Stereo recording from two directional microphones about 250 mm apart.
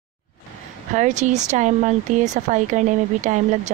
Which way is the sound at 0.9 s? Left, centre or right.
Right.